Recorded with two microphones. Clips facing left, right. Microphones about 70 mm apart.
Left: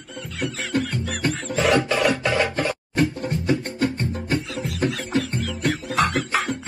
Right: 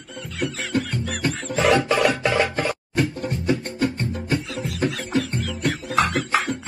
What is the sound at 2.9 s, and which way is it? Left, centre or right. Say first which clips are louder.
Music: left 3 dB; left.